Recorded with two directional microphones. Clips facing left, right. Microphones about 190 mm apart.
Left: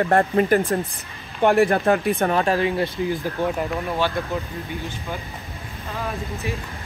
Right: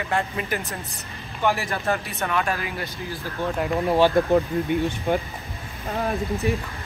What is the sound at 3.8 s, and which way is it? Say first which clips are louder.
Speech: right 8 dB; 35° right (ahead or behind).